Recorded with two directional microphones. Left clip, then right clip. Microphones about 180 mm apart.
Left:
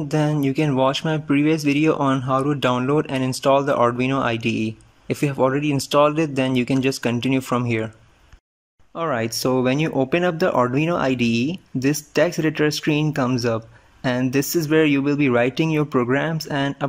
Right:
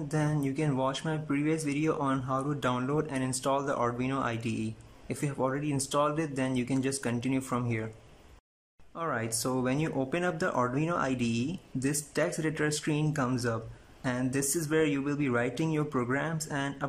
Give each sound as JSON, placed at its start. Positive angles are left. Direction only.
{"t": 0.1, "sound": "speech", "side_deg": 20}
{"t": 8.9, "sound": "speech", "side_deg": 20}